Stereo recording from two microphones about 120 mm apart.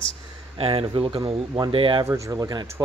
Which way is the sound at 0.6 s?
50° right (ahead or behind).